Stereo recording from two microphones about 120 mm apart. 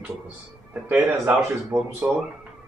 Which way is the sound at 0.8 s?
10° right (ahead or behind).